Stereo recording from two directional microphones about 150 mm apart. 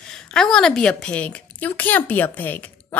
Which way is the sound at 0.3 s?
5° left (ahead or behind).